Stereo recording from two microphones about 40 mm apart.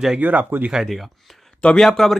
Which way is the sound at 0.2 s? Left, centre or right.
Right.